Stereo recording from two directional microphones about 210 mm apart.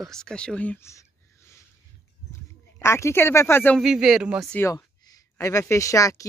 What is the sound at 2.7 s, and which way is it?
Speech, 10° left (ahead or behind).